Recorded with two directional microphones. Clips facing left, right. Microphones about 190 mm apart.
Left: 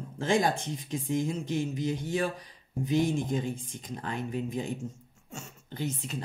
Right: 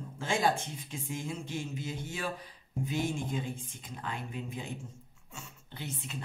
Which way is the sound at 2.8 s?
40° left (ahead or behind).